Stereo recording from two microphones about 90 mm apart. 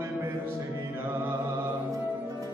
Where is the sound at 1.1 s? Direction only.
20° right (ahead or behind).